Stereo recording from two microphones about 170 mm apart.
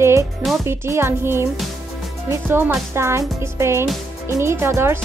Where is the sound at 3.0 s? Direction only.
15° right (ahead or behind).